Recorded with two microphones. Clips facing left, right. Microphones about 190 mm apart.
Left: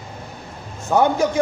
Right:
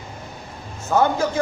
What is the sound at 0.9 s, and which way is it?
Speech, 15° left (ahead or behind).